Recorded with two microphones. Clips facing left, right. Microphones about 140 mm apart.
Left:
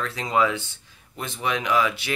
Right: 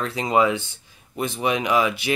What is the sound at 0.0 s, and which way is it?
Speech, 20° right (ahead or behind).